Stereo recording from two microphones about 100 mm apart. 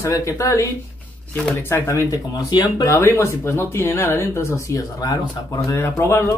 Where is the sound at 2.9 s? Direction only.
30° left (ahead or behind).